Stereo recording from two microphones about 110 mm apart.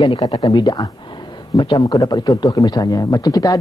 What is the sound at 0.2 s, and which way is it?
Speech, 35° left (ahead or behind).